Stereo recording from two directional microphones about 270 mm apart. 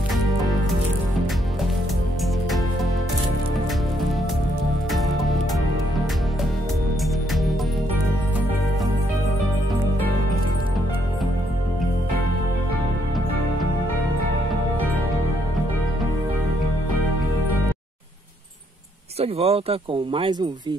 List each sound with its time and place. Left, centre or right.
4.9 s music: centre
19.1 s speech: right